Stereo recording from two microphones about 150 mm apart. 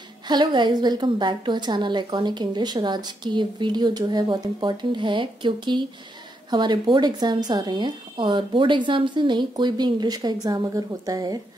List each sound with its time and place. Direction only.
0.3 s a woman's voice: 30° right (ahead or behind)